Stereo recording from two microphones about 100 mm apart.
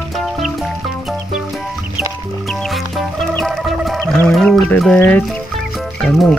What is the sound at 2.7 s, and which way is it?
Music, centre (ahead or behind).